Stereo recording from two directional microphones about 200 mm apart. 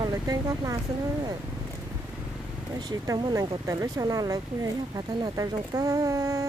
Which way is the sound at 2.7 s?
20° right (ahead or behind).